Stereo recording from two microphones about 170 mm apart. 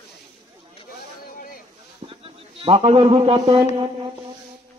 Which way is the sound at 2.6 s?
30° right (ahead or behind).